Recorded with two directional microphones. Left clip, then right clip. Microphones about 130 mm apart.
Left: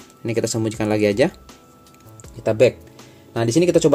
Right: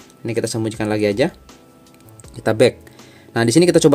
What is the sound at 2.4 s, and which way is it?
Speech, 40° right (ahead or behind).